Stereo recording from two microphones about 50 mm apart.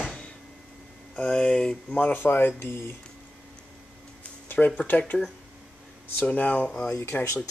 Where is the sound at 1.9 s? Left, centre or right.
Left.